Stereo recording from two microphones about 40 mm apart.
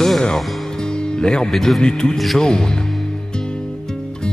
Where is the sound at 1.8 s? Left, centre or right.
Centre.